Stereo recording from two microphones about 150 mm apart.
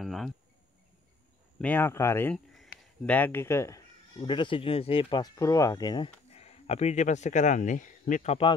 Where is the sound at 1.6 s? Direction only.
15° left (ahead or behind).